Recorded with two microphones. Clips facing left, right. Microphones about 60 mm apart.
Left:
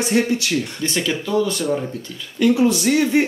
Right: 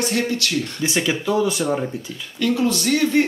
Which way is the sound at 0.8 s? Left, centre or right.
Centre.